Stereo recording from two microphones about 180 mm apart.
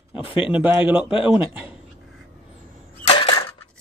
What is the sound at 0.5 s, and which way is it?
Speech, 10° right (ahead or behind).